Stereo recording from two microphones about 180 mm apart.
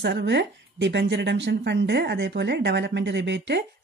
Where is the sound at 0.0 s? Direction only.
75° right (ahead or behind).